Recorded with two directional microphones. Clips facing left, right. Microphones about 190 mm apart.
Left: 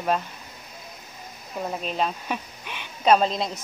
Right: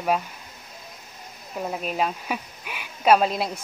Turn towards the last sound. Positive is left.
turn(degrees=-5)  # may be behind; listen again after turning